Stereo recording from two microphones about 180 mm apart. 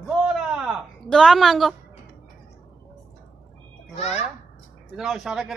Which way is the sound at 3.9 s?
40° left (ahead or behind).